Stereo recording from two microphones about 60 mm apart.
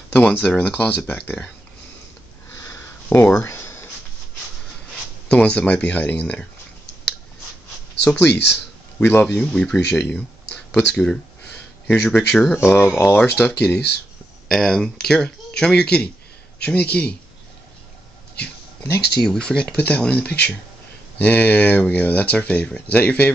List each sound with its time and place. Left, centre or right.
0.1 s speech: left
2.6 s sniff: left
3.1 s speech: left
3.4 s a sound: left
5.3 s speech: centre
8.2 s speech: centre
9.4 s speech: centre
12.6 s speech: left
13.2 s speech: centre
14.5 s speech: centre
19.2 s speech: centre; by 23.3 s left